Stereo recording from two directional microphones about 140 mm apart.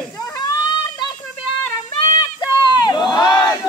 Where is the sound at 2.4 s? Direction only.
30° left (ahead or behind).